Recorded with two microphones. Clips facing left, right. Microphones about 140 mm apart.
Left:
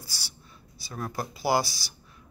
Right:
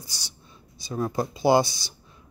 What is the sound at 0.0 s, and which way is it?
Speech, 20° right (ahead or behind).